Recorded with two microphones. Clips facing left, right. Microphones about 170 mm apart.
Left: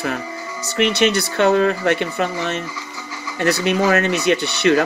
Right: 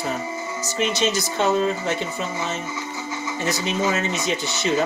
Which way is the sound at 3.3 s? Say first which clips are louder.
Left 7 dB; 70° left (ahead or behind).